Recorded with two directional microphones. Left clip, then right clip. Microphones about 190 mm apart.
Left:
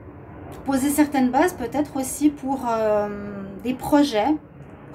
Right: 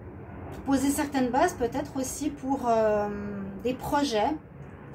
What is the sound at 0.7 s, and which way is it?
A woman's voice, 45° left (ahead or behind).